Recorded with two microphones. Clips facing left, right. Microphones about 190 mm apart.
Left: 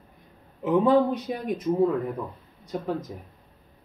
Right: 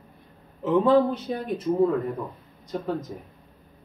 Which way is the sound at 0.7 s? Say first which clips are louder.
Right 1 dB; 15° left (ahead or behind).